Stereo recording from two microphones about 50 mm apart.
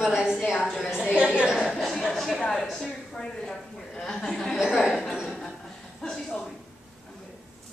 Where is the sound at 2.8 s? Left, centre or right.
Centre.